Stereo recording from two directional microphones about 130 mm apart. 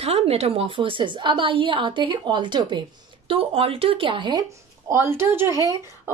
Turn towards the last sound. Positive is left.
turn(degrees=-25)  # may be behind; listen again after turning